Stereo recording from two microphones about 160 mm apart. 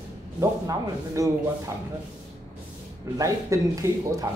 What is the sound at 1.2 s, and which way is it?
Speech, 20° right (ahead or behind).